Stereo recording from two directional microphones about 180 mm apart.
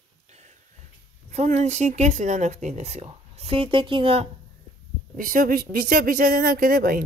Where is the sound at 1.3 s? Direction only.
40° right (ahead or behind).